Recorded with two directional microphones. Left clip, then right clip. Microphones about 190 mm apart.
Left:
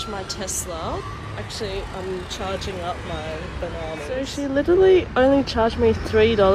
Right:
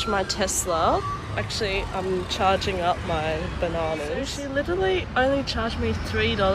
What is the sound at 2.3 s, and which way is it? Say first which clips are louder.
Speech: right 10 dB; 15° left (ahead or behind).